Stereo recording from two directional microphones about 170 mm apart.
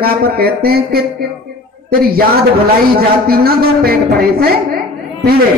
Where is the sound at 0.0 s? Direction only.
65° right (ahead or behind).